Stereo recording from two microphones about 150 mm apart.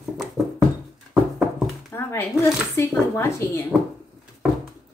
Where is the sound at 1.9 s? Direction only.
15° left (ahead or behind).